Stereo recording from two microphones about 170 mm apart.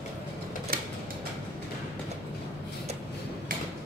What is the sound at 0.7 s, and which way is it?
Music, 60° right (ahead or behind).